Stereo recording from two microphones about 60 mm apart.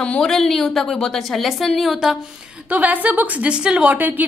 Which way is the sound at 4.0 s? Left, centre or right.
Right.